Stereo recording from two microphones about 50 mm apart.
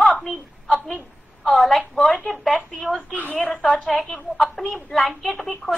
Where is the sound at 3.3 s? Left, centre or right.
Left.